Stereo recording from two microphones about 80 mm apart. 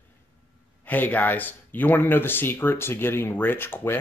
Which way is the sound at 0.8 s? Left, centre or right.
Left.